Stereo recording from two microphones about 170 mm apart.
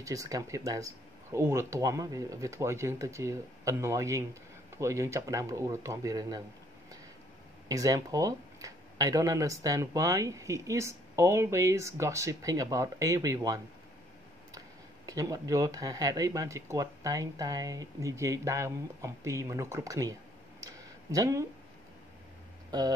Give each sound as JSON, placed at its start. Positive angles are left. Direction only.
{"t": 0.0, "sound": "speech", "side_deg": -20}
{"t": 7.6, "sound": "speech", "side_deg": -20}
{"t": 15.0, "sound": "speech", "side_deg": -20}
{"t": 20.6, "sound": "a sound", "side_deg": -20}
{"t": 22.7, "sound": "speech", "side_deg": -25}